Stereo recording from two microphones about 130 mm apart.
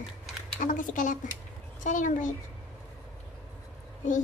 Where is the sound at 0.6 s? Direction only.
90° left.